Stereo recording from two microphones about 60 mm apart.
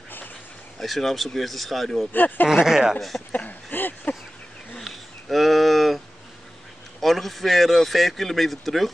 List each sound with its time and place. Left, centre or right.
0.7 s a man's voice: centre
2.1 s speech: left
2.4 s speech: centre
3.3 s speech: left
4.7 s a sound: centre
7.0 s a man's voice: centre